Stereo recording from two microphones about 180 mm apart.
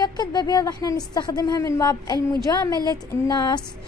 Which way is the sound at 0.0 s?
25° left (ahead or behind).